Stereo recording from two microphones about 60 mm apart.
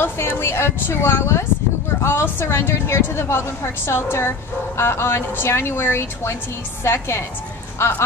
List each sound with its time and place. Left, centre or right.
0.0 s a woman's voice: left
0.4 s a woman's voice: left